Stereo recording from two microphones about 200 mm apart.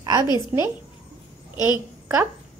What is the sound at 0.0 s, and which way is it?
A woman's voice, 20° right (ahead or behind).